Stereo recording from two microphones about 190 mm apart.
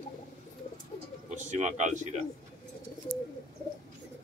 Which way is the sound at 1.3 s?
40° right (ahead or behind).